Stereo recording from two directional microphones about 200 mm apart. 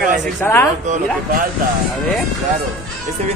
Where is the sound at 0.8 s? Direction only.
35° right (ahead or behind).